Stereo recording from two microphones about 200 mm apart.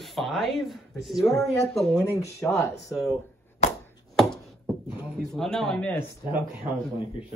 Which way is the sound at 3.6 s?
35° left (ahead or behind).